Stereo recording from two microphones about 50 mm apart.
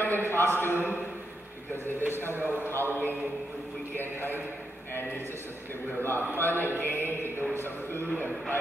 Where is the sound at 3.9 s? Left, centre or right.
Left.